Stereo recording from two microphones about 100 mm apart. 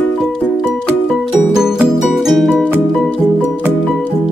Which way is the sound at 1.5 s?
5° right (ahead or behind).